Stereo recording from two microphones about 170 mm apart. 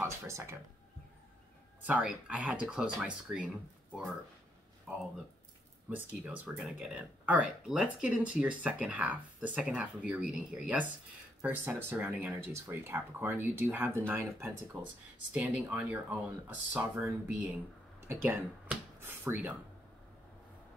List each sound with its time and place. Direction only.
0.0 s speech: 15° right (ahead or behind)
1.8 s speech: 10° right (ahead or behind)
5.9 s speech: 10° right (ahead or behind)